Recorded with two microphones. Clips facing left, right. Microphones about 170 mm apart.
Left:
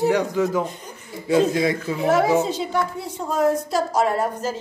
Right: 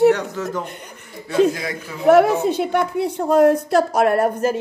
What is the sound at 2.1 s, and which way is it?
A woman's voice, 60° right (ahead or behind).